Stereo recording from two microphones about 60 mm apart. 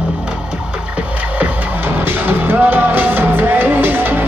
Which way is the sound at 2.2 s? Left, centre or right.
Right.